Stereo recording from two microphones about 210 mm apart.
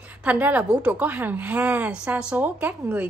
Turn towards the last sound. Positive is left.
turn(degrees=-5)  # may be behind; listen again after turning